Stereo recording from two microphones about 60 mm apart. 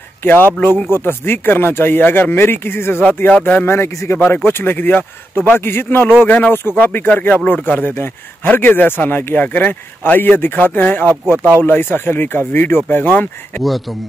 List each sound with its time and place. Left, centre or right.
0.2 s a man's voice: left
3.6 s a man's voice: left
6.2 s a man's voice: left